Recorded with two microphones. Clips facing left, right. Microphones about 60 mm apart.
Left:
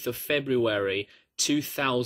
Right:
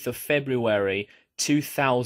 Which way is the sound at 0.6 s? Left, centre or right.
Right.